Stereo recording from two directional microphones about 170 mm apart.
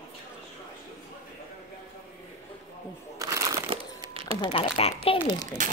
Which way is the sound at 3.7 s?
35° right (ahead or behind).